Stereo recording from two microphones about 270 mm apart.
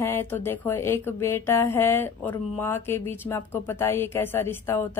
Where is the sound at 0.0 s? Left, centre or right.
Centre.